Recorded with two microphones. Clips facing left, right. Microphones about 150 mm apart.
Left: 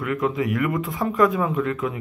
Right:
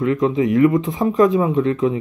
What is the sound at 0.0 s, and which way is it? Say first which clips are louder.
Speech: right 6 dB; 25° right (ahead or behind).